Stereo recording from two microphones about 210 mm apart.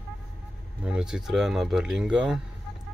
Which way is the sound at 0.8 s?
5° right (ahead or behind).